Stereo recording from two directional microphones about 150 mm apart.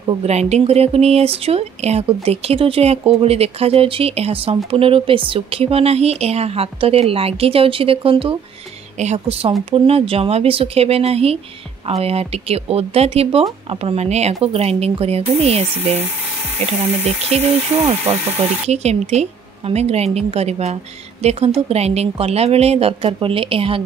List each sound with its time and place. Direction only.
0.2 s speech: 45° right (ahead or behind)
9.0 s speech: 50° right (ahead or behind)
17.3 s speech: 45° right (ahead or behind)